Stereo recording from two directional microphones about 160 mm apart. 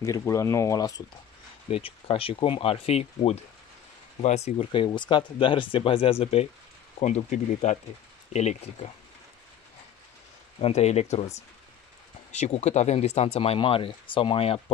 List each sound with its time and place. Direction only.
0.0 s speech: 20° left (ahead or behind)
1.7 s speech: 35° left (ahead or behind)
10.6 s speech: 45° left (ahead or behind)